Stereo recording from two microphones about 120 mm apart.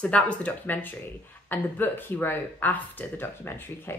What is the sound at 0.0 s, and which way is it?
Speech, 10° left (ahead or behind).